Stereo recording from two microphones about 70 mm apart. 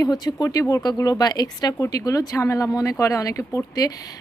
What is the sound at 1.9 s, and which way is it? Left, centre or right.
A woman's voice, left.